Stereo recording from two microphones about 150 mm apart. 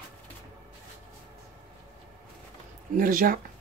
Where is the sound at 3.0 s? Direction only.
70° right (ahead or behind).